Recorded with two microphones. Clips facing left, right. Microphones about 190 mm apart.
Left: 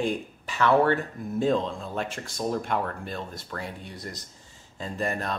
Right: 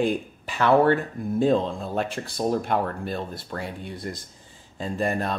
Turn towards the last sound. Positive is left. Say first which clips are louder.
# right 4 dB
turn(degrees=-30)  # may be behind; listen again after turning